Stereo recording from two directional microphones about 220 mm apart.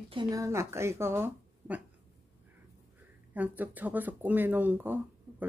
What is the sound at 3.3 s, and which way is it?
Speech, 5° right (ahead or behind).